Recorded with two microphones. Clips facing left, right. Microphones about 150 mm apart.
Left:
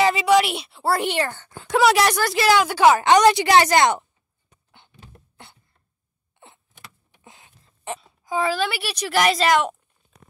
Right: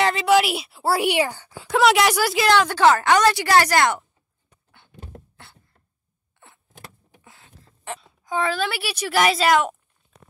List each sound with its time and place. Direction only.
0.0 s speech: 5° left (ahead or behind)
1.7 s speech: centre (ahead or behind)
2.5 s speech: 10° left (ahead or behind)
6.4 s vehicle: 20° left (ahead or behind)
7.2 s a sound: 15° left (ahead or behind)
8.0 s speech: centre (ahead or behind)